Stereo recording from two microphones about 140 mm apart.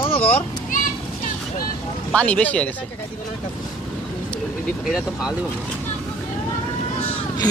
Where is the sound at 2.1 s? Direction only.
10° left (ahead or behind).